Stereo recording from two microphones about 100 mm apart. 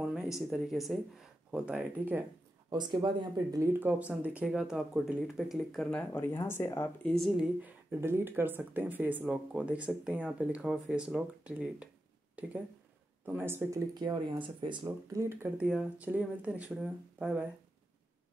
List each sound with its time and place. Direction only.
0.0 s speech: 5° right (ahead or behind)
1.5 s speech: 10° right (ahead or behind)
2.7 s speech: 50° right (ahead or behind)
3.8 s speech: 15° right (ahead or behind); by 5.9 s centre (ahead or behind)
5.9 s speech: 15° left (ahead or behind)
7.0 s speech: 10° left (ahead or behind)
7.6 s speech: 20° right (ahead or behind)
13.2 s speech: 20° right (ahead or behind)
13.9 s speech: 50° right (ahead or behind)
15.1 s speech: 25° right (ahead or behind)
15.5 s speech: 10° right (ahead or behind)